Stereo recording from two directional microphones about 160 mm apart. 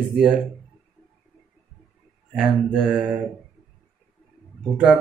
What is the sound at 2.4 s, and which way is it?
Mantra, 5° right (ahead or behind).